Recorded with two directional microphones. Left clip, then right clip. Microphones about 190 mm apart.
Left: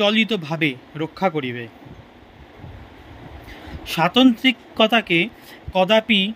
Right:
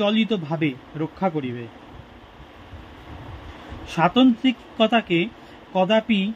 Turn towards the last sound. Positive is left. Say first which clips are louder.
# left 4 dB
turn(degrees=45)  # may be behind; listen again after turning